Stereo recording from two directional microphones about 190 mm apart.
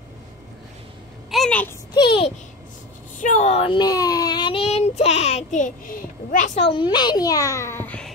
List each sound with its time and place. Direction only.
1.3 s a sound: 5° left (ahead or behind)
2.0 s a child's voice: 30° left (ahead or behind)
3.2 s a child's voice: 40° left (ahead or behind)
6.7 s a child's voice: 25° left (ahead or behind); by 8.1 s 10° left (ahead or behind)